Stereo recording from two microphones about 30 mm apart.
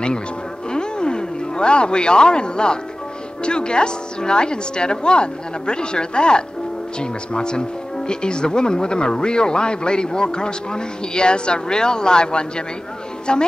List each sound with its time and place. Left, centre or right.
0.7 s music: left
3.4 s a woman's voice: left